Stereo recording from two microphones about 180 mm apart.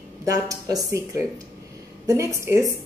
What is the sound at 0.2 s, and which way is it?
A woman's voice, 20° right (ahead or behind).